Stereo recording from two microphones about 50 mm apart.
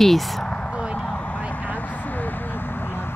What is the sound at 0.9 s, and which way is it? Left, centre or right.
Vehicle, left.